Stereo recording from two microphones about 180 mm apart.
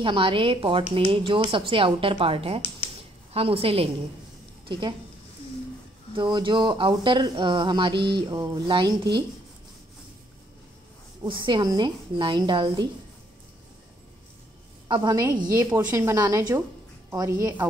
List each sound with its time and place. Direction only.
0.0 s a woman's voice: 25° right (ahead or behind)
6.1 s speech: 25° right (ahead or behind)
11.2 s speech: 25° right (ahead or behind)
14.9 s speech: 20° right (ahead or behind)